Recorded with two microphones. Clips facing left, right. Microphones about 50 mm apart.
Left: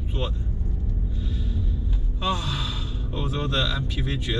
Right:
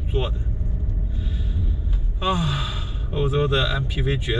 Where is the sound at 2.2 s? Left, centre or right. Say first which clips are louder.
Right 4 dB; centre.